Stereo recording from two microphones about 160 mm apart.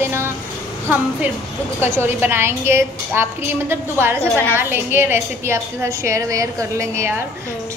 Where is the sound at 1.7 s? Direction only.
15° right (ahead or behind).